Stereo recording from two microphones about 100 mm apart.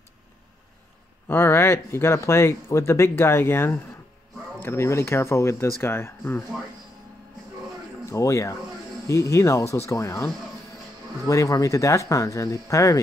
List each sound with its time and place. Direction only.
1.2 s speech: 25° left (ahead or behind)
8.1 s speech: 30° left (ahead or behind)